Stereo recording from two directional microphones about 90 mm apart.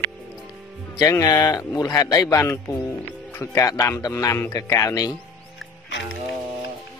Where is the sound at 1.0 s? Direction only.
40° left (ahead or behind).